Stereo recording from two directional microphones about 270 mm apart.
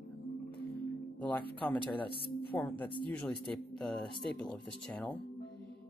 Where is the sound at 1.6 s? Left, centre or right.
Centre.